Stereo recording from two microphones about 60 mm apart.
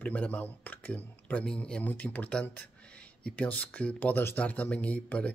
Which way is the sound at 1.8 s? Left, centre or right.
Left.